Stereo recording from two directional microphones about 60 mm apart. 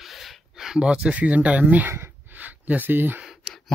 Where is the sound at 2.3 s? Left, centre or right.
Right.